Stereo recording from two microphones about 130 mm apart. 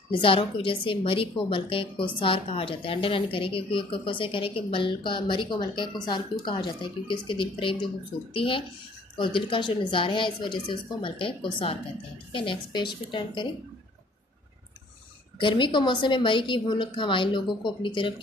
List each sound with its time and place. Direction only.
0.1 s a woman's voice: 45° left (ahead or behind)
15.3 s a woman's voice: 40° left (ahead or behind)